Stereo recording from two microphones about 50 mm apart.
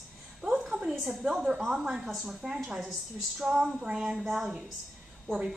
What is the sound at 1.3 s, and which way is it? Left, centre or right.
A woman's voice, centre.